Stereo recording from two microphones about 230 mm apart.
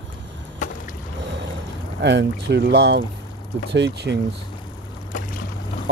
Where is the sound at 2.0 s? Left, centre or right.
Right.